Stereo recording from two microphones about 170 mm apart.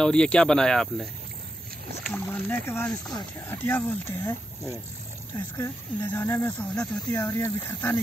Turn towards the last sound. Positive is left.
turn(degrees=15)  # may be behind; listen again after turning